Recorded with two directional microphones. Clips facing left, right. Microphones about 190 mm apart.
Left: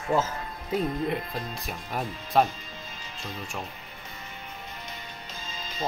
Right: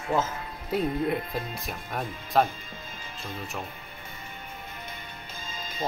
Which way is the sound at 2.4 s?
50° right (ahead or behind).